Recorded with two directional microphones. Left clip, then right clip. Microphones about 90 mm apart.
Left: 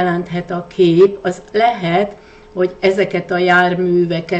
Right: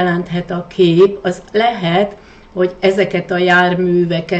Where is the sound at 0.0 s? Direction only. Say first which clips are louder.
Right 1 dB; 20° left (ahead or behind).